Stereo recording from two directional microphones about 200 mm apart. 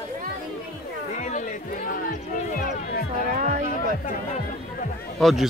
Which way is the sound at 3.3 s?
35° right (ahead or behind).